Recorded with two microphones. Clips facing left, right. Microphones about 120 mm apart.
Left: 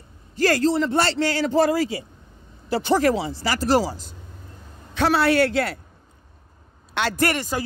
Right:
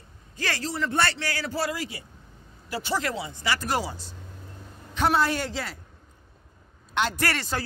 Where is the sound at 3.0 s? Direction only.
30° left (ahead or behind).